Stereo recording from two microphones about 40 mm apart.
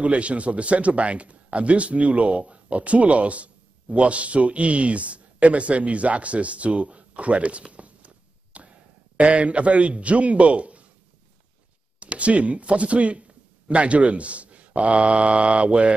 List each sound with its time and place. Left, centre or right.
0.0 s a man's voice: right
12.0 s a man's voice: right